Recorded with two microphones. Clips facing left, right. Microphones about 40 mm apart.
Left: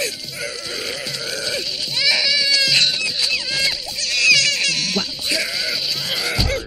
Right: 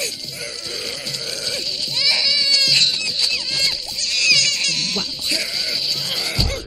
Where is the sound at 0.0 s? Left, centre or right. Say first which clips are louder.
Left 3 dB; centre.